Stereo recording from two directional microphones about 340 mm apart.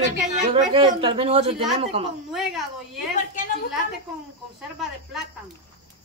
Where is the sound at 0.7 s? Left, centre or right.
Centre.